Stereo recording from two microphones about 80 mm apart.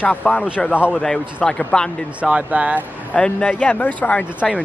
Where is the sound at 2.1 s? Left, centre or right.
Centre.